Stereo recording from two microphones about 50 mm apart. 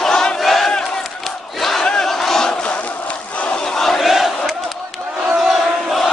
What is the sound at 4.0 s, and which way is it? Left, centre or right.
Crowd, centre.